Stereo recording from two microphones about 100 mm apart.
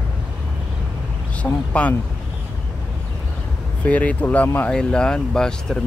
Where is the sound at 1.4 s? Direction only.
15° left (ahead or behind).